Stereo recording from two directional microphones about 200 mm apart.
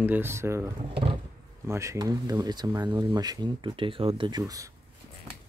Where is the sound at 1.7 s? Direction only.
15° right (ahead or behind).